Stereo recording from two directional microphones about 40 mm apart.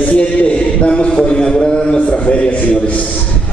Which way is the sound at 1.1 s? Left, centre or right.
Centre.